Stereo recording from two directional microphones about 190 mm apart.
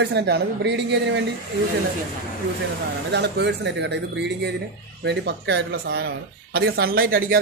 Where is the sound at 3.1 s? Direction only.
65° right (ahead or behind).